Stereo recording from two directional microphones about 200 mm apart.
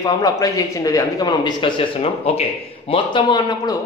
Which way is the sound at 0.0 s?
15° left (ahead or behind).